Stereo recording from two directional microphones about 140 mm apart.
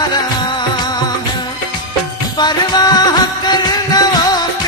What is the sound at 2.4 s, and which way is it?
Music, 30° left (ahead or behind).